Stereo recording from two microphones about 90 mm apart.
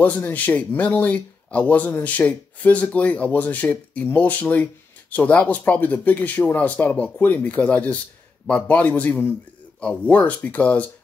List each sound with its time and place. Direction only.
0.0 s speech: 20° left (ahead or behind)